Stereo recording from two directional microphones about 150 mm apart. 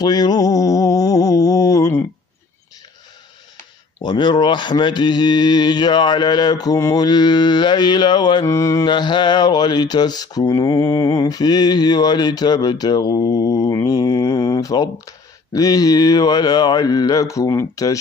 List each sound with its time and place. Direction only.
0.0 s mantra: 25° left (ahead or behind)
4.0 s speech: 30° left (ahead or behind)